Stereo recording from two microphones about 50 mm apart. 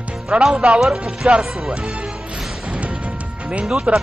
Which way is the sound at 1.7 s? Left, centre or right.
Centre.